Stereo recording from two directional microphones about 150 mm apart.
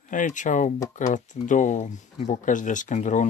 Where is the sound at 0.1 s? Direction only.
60° left (ahead or behind).